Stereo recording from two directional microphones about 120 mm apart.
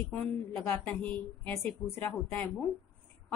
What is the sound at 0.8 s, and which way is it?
A woman's voice, 10° left (ahead or behind).